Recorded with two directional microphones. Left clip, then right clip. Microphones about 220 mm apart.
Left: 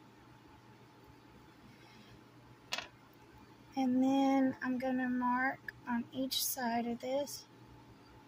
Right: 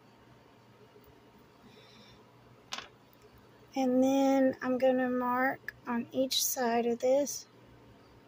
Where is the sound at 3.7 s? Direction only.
40° right (ahead or behind).